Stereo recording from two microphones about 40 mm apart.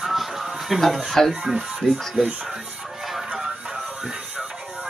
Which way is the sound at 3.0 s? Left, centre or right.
Centre.